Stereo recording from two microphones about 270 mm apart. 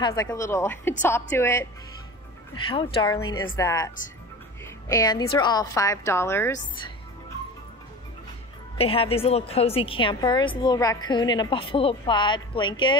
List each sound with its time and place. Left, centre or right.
0.0 s a woman's voice: centre
8.7 s a woman's voice: left